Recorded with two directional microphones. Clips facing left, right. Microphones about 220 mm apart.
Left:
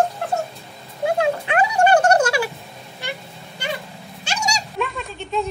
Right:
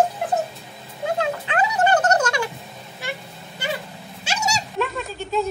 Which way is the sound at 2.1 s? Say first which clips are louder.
Left 3 dB; 10° left (ahead or behind).